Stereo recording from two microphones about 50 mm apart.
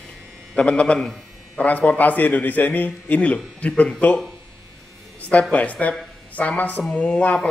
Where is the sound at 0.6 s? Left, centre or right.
Left.